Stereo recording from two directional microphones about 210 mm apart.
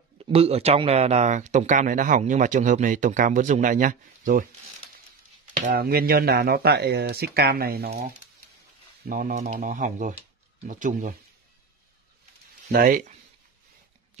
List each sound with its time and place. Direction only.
0.2 s speech: 30° right (ahead or behind)
5.7 s speech: 45° right (ahead or behind)
9.0 s speech: 40° right (ahead or behind)
12.7 s speech: 40° right (ahead or behind)